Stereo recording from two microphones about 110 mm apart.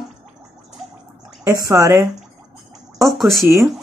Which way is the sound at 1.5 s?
30° right (ahead or behind).